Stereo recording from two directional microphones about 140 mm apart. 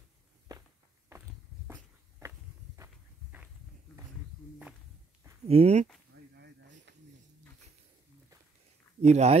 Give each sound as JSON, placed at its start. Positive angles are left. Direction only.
{"t": 0.5, "sound": "walk", "side_deg": -20}
{"t": 5.5, "sound": "speech", "side_deg": -50}
{"t": 9.0, "sound": "speech", "side_deg": -50}